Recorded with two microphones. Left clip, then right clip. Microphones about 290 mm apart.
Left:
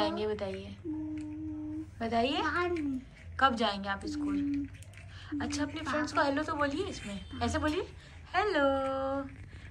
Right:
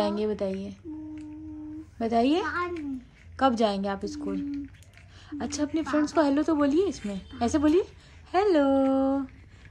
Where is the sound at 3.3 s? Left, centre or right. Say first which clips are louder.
Right 4 dB; right.